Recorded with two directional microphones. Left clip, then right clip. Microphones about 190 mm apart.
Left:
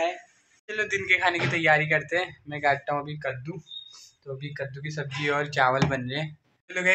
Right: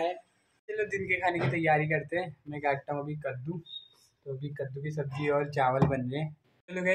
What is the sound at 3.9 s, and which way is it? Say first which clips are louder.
Speech: left 3 dB; 5° left (ahead or behind).